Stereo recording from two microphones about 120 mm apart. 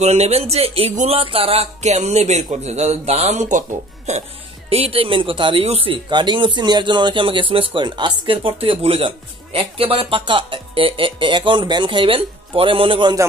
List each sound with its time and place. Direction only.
0.0 s speech: 65° right (ahead or behind); by 4.2 s 80° right
4.6 s speech: 55° right (ahead or behind)
6.0 s speech: 40° right (ahead or behind)